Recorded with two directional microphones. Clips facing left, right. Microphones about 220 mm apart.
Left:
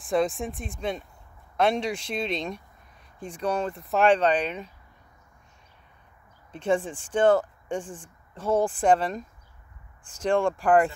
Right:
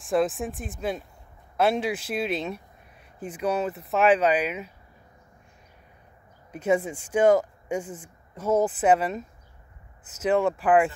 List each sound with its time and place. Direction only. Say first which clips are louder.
0.0 s speech: right 1 dB; centre (ahead or behind)
6.5 s speech: right 1 dB; 10° right (ahead or behind)